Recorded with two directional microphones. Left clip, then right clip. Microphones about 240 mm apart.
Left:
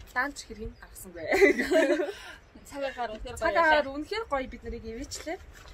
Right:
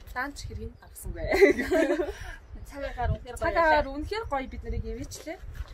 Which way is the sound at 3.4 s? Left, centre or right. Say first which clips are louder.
Even; centre.